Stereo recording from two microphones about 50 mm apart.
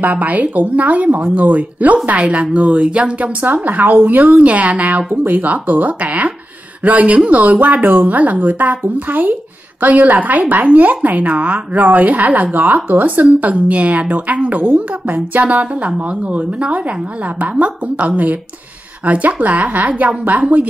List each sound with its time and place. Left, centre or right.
0.0 s a woman's voice: right